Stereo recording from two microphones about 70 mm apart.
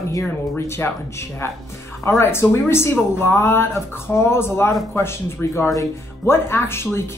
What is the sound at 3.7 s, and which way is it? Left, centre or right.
Speech, left.